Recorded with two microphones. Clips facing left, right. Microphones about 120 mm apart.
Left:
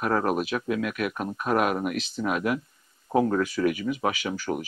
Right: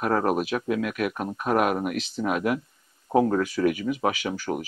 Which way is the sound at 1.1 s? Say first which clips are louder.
Right 1 dB; 25° right (ahead or behind).